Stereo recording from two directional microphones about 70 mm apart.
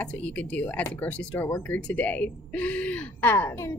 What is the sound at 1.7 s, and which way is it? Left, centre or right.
Speech, left.